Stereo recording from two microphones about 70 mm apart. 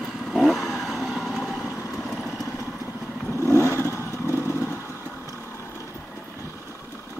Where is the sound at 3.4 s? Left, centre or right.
Left.